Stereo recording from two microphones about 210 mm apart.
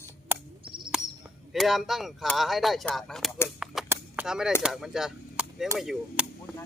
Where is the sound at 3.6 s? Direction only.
Centre (ahead or behind).